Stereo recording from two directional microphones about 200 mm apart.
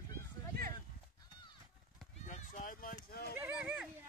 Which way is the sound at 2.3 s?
35° left (ahead or behind).